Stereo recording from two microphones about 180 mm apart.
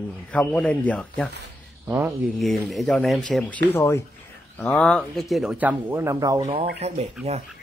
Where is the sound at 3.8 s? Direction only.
15° left (ahead or behind); by 6.5 s 20° right (ahead or behind).